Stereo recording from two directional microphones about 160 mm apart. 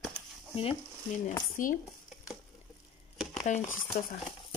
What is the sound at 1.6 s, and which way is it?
Speech, 55° left (ahead or behind).